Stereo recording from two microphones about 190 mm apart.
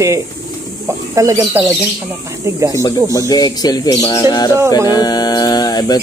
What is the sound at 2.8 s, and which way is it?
Speech, 20° left (ahead or behind).